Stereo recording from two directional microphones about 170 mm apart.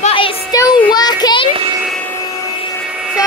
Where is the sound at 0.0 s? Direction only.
30° left (ahead or behind).